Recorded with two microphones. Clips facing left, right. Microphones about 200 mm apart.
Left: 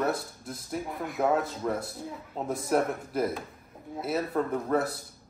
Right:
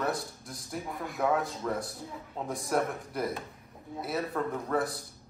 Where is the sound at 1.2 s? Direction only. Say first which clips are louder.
Left 2 dB; 25° left (ahead or behind).